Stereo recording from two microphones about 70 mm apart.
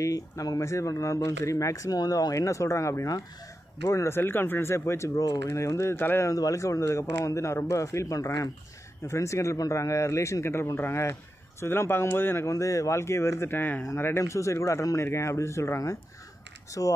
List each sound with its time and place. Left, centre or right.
0.0 s speech: left
6.2 s speech: left
12.4 s speech: left